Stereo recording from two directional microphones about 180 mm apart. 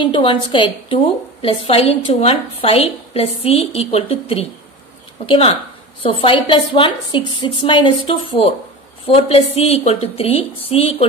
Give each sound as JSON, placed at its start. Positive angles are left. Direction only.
{"t": 0.0, "sound": "a woman's voice", "side_deg": 30}